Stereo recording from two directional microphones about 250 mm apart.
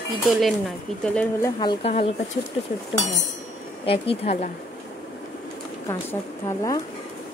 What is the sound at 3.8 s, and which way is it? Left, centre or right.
Speech, left.